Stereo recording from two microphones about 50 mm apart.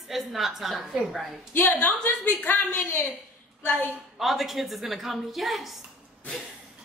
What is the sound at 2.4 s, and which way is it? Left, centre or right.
Speech, left.